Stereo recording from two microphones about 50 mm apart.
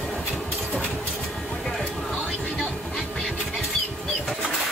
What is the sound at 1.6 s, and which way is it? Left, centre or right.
Music, centre.